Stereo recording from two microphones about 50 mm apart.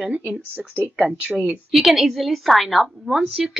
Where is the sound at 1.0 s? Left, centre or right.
Right.